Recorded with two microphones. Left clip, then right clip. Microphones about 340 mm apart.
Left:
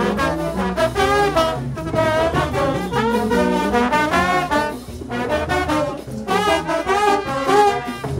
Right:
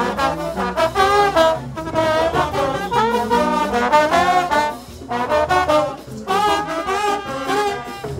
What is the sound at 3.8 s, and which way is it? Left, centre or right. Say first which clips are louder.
Music: right 4 dB; right.